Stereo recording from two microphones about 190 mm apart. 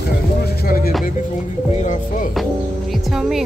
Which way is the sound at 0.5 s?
50° left (ahead or behind).